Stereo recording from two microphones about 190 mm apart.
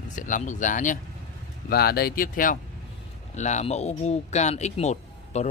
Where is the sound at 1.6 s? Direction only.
55° left (ahead or behind).